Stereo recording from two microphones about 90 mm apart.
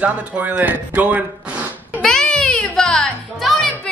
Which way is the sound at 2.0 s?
5° left (ahead or behind).